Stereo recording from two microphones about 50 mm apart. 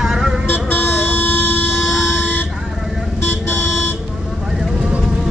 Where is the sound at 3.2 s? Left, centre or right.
Left.